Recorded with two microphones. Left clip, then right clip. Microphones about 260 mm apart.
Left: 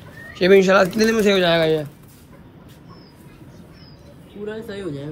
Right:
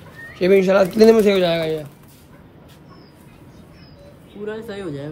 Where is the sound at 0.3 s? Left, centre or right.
Centre.